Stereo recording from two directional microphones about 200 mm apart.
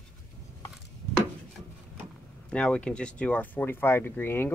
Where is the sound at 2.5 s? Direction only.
5° left (ahead or behind).